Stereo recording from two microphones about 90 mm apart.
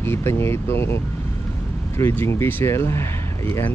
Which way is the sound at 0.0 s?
25° left (ahead or behind).